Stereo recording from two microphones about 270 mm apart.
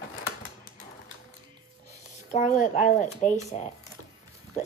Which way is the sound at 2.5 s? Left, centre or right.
Left.